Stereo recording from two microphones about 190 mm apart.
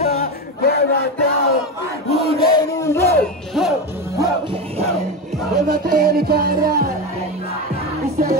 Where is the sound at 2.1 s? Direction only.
30° left (ahead or behind).